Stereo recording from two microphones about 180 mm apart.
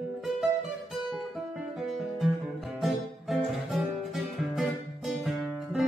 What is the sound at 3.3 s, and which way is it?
Music, centre (ahead or behind).